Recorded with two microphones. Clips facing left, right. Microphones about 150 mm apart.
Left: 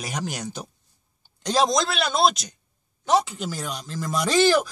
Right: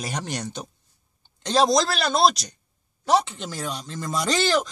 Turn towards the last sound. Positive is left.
turn(degrees=5)  # may be behind; listen again after turning